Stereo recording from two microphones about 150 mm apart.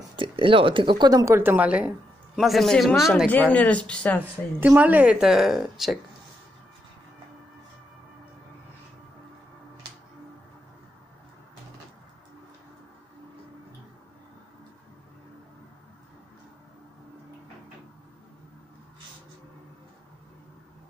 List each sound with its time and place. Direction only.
0.1 s a woman's voice: 35° right (ahead or behind); by 3.3 s centre (ahead or behind)
3.3 s speech: 10° left (ahead or behind)
4.6 s a woman's voice: 10° right (ahead or behind)